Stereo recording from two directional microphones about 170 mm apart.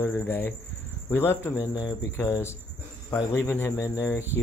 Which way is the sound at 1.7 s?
25° left (ahead or behind).